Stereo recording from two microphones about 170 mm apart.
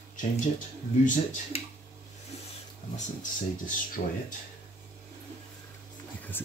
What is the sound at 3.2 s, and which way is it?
Speech, 50° left (ahead or behind).